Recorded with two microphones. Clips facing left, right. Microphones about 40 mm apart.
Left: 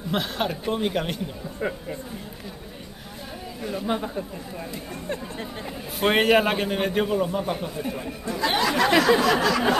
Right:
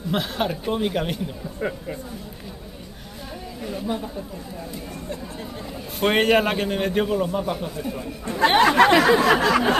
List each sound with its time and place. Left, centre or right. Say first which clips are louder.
0.1 s a man's voice: right 2 dB; centre
3.8 s speech: left 1 dB; left
5.9 s a man's voice: right 1 dB; centre
8.4 s speech: right 7 dB; right
9.2 s a sound: right 3 dB; right